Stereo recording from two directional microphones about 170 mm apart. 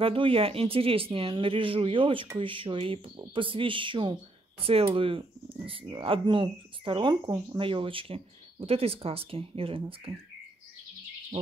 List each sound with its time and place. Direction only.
0.0 s speech: 30° right (ahead or behind)